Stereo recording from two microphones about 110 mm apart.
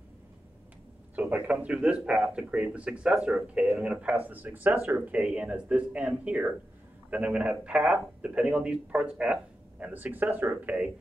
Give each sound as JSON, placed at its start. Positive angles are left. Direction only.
{"t": 1.3, "sound": "speech", "side_deg": -10}